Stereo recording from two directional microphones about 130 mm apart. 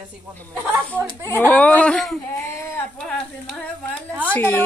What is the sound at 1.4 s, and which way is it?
Speech, 10° left (ahead or behind).